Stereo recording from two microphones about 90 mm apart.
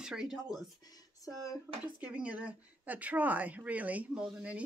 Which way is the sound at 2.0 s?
15° right (ahead or behind).